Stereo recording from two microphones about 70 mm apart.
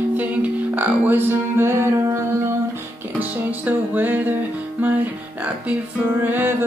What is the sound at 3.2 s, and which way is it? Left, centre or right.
Music, right.